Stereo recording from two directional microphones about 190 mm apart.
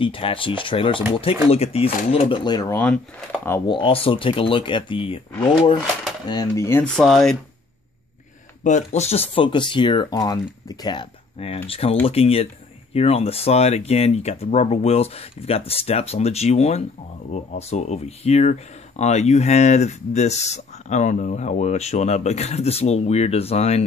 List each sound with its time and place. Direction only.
0.0 s speech: 25° left (ahead or behind)
2.7 s speech: 5° left (ahead or behind)
3.6 s speech: 25° left (ahead or behind)
7.0 s speech: centre (ahead or behind)
8.6 s speech: 40° left (ahead or behind)